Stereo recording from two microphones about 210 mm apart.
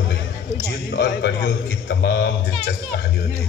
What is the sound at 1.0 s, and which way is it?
Speech, 55° left (ahead or behind).